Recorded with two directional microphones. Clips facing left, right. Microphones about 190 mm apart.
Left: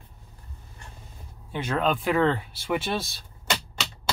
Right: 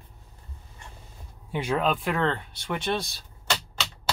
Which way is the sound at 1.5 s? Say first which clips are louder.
Even; 10° right (ahead or behind).